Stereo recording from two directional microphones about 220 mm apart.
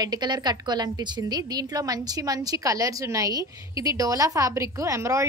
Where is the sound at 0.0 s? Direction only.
20° right (ahead or behind).